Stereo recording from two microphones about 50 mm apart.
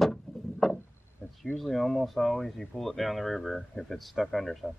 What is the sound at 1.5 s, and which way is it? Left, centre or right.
Speech, centre.